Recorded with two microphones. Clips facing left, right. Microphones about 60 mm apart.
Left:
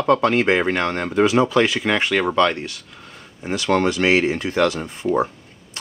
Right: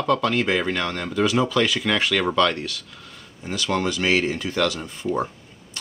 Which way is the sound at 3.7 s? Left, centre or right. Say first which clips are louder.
Left 5 dB; left.